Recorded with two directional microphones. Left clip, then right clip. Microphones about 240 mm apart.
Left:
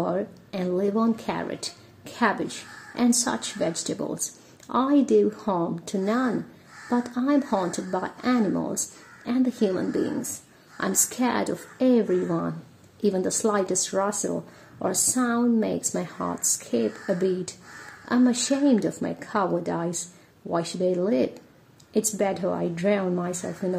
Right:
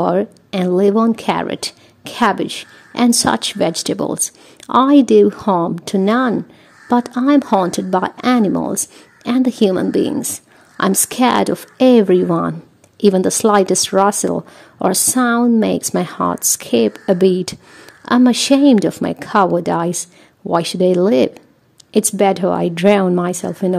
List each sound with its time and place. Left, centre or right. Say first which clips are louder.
0.0 s speech: right 11 dB; right